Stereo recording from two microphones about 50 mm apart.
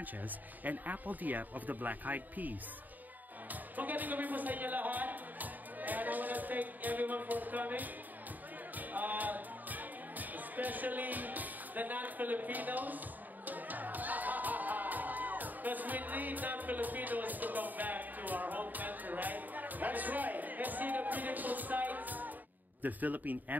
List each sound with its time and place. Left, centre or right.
0.7 s speech: right
3.7 s music: right
22.8 s speech: right